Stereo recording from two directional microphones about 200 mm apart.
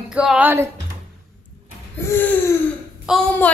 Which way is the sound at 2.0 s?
10° left (ahead or behind).